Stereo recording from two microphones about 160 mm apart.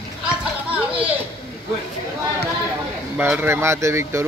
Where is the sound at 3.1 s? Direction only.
10° right (ahead or behind).